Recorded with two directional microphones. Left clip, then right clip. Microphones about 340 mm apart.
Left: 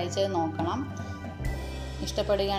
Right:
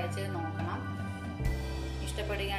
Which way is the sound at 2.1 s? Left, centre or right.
Centre.